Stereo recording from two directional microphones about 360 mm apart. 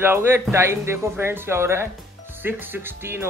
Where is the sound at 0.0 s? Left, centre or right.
Centre.